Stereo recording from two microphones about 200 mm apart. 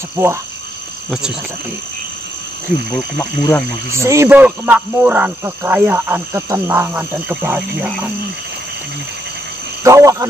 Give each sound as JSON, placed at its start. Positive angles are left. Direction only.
{"t": 0.1, "sound": "speech", "side_deg": -15}
{"t": 3.2, "sound": "speech", "side_deg": 15}
{"t": 3.9, "sound": "speech", "side_deg": -15}
{"t": 9.8, "sound": "speech", "side_deg": -15}